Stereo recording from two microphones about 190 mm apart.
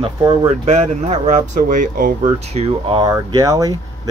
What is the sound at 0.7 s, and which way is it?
Speech, 35° right (ahead or behind).